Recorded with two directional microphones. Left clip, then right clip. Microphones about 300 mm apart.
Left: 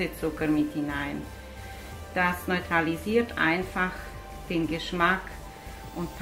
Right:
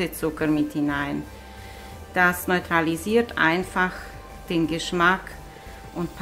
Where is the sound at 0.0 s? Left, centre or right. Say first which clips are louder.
Right 4 dB; right.